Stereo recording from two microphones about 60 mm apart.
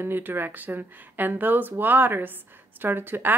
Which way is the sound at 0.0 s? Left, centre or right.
Right.